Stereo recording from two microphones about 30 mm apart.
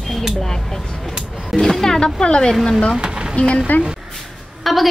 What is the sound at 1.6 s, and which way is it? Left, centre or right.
Speech, centre.